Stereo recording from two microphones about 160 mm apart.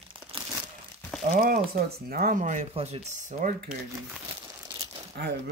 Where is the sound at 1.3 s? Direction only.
60° right (ahead or behind).